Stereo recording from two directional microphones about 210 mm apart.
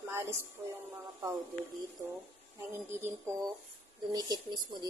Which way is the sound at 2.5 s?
10° right (ahead or behind).